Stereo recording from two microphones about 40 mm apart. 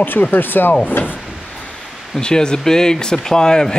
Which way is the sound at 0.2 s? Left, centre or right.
Left.